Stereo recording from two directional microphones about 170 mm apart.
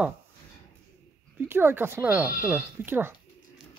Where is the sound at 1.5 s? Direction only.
15° right (ahead or behind).